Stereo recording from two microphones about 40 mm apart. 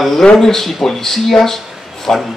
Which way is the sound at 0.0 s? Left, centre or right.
Centre.